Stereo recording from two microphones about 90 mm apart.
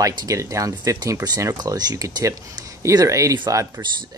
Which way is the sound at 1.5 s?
50° right (ahead or behind).